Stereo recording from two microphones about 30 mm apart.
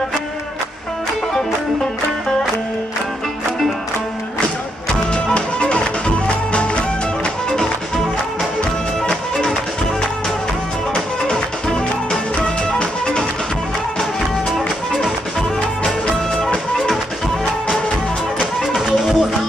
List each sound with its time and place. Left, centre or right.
5.1 s music: left
12.4 s music: left
18.9 s music: centre